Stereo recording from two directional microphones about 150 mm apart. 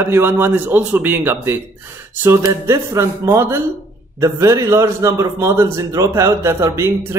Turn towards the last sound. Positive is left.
turn(degrees=-20)  # may be behind; listen again after turning